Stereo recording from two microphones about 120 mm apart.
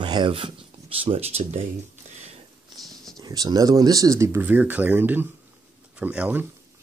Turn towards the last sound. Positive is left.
turn(degrees=-10)  # may be behind; listen again after turning